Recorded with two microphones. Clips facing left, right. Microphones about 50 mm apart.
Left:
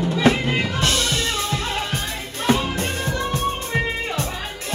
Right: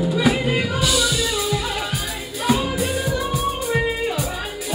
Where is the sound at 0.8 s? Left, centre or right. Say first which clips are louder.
Right 1 dB; left.